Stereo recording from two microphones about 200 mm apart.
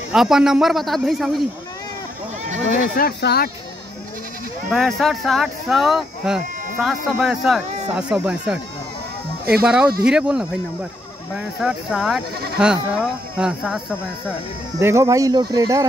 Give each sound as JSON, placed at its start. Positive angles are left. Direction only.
{"t": 0.1, "sound": "speech", "side_deg": 0}
{"t": 2.7, "sound": "speech", "side_deg": 50}
{"t": 4.6, "sound": "speech", "side_deg": 0}
{"t": 9.5, "sound": "speech", "side_deg": -50}
{"t": 10.0, "sound": "speech", "side_deg": -5}